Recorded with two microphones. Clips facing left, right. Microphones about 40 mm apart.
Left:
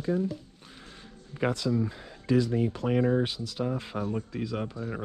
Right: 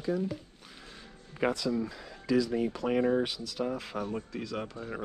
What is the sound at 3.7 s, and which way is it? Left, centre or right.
Speech, left.